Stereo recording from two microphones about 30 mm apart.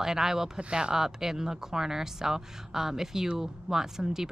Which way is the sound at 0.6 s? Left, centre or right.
Right.